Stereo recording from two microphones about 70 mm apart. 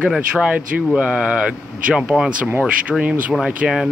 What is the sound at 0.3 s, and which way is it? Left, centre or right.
Speech, centre.